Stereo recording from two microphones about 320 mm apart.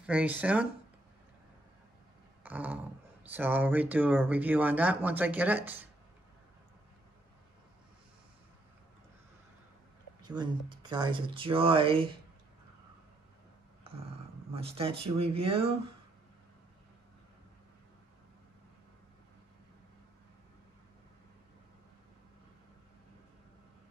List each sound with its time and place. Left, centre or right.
0.0 s speech: centre
2.4 s a sound: centre
3.3 s speech: centre
10.2 s speech: centre
14.5 s speech: centre